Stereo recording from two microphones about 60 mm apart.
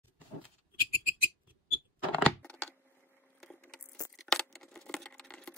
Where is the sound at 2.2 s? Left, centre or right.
Centre.